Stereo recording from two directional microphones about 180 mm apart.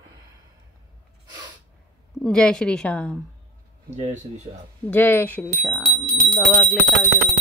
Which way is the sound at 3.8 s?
40° right (ahead or behind).